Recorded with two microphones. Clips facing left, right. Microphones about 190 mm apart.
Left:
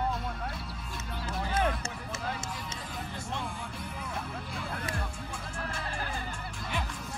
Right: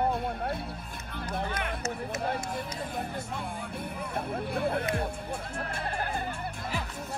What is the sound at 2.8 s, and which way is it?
Vehicle, 55° right (ahead or behind).